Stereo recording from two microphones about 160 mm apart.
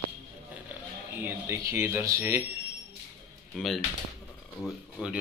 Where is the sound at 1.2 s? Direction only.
15° right (ahead or behind).